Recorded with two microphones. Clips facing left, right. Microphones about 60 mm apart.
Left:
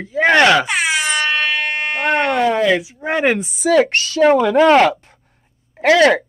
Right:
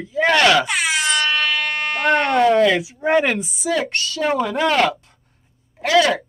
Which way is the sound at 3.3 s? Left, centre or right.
Left.